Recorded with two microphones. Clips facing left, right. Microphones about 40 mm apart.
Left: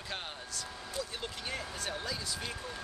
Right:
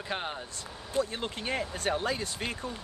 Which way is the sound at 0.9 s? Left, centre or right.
Right.